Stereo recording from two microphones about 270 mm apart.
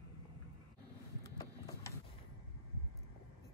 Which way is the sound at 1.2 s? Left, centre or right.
Centre.